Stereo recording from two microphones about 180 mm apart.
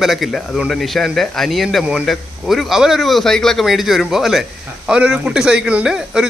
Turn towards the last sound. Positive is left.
turn(degrees=-5)  # may be behind; listen again after turning